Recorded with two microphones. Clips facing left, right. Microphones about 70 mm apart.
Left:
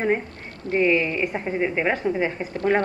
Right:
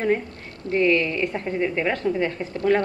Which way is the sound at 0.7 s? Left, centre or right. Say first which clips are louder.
Even; centre.